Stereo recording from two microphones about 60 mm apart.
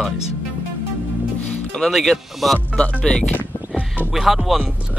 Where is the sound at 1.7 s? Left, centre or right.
Centre.